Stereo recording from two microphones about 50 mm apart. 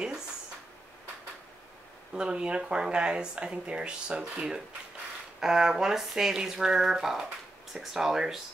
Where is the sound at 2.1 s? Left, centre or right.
Centre.